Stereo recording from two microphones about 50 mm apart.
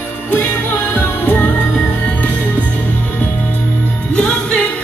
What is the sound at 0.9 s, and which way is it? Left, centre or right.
Music, left.